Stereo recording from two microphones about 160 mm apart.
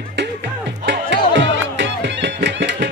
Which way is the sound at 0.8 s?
90° right.